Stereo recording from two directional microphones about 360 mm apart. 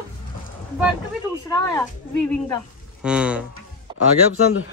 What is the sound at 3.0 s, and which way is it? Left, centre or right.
Speech, centre.